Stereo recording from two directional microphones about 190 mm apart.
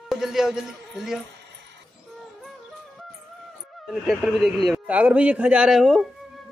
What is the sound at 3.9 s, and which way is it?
A man's voice, centre (ahead or behind).